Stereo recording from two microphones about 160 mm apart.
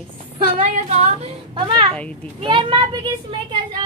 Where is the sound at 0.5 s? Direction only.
40° right (ahead or behind).